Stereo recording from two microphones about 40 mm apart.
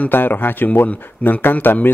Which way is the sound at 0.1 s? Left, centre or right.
Left.